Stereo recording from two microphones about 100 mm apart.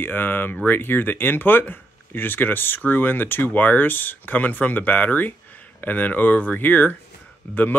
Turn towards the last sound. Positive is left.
turn(degrees=15)  # may be behind; listen again after turning